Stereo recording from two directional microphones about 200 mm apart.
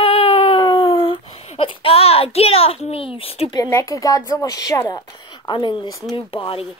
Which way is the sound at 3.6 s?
15° left (ahead or behind).